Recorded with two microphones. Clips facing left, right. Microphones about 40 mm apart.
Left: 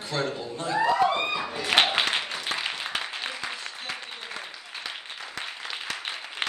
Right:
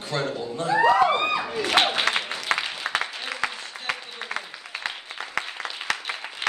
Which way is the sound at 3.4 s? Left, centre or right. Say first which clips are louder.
Right 6 dB; right.